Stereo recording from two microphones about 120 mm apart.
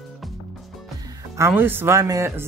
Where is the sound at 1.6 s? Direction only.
15° right (ahead or behind).